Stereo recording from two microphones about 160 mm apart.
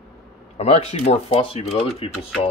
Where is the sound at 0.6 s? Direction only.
40° left (ahead or behind).